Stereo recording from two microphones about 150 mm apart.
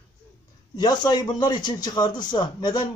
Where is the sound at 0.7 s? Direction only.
30° left (ahead or behind).